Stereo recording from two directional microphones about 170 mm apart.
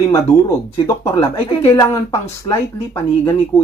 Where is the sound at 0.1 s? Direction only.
15° left (ahead or behind).